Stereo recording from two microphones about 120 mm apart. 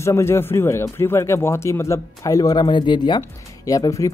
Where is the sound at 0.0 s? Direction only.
20° left (ahead or behind); by 3.2 s 40° left (ahead or behind).